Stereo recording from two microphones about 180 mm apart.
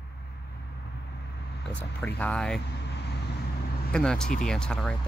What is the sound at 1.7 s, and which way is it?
Speech, 10° left (ahead or behind).